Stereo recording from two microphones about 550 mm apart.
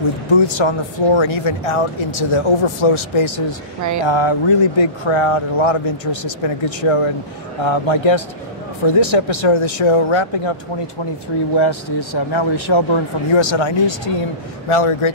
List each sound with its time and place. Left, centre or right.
0.3 s speech: left
11.5 s speech: left